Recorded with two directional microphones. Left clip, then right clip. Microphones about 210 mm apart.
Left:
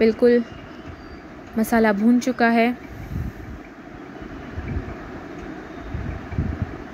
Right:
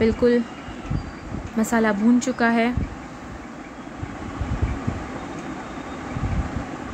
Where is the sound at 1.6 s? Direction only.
20° left (ahead or behind).